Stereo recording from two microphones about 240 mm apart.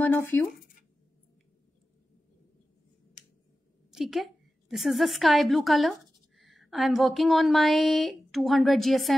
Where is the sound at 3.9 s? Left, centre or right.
Centre.